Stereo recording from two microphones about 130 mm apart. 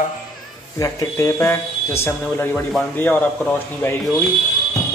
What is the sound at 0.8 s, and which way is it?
A man's voice, 20° left (ahead or behind).